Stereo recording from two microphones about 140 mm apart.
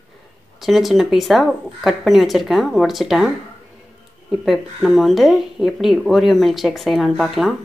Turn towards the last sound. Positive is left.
turn(degrees=0)  # may be behind; listen again after turning